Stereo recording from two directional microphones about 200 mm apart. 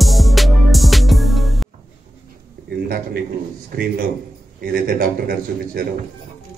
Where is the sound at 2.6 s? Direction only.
50° right (ahead or behind).